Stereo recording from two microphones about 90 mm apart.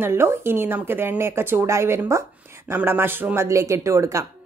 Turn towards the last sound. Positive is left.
turn(degrees=-35)  # may be behind; listen again after turning